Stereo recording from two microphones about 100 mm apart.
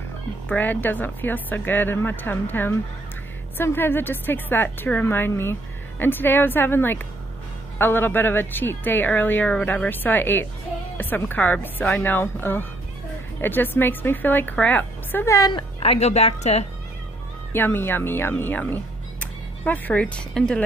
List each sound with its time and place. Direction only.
0.5 s a woman's voice: 15° left (ahead or behind)
15.8 s a woman's voice: 90° left
17.5 s a woman's voice: 20° left (ahead or behind)